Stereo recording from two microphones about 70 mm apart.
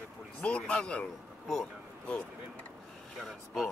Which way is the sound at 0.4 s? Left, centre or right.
Centre.